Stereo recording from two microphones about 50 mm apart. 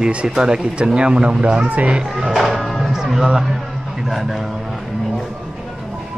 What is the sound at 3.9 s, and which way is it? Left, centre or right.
Speech, centre.